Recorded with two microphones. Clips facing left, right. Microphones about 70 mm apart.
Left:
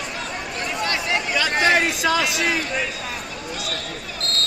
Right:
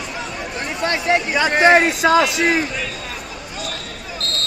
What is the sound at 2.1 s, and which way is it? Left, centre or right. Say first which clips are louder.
Speech: right 6 dB; right.